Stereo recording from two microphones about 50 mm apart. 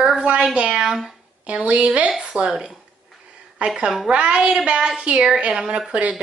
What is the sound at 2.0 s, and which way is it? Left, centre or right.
A woman's voice, centre.